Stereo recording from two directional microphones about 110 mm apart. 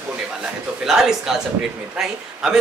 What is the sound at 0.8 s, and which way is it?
Speech, 5° right (ahead or behind).